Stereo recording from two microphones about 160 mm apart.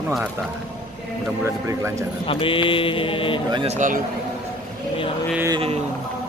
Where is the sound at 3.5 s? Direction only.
40° right (ahead or behind).